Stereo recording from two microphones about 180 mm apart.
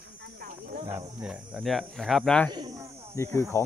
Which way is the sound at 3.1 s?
15° left (ahead or behind).